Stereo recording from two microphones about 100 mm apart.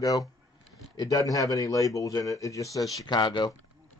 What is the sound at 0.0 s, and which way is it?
Speech, 35° left (ahead or behind).